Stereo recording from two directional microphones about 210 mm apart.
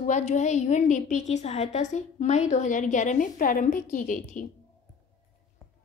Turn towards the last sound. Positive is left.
turn(degrees=40)  # may be behind; listen again after turning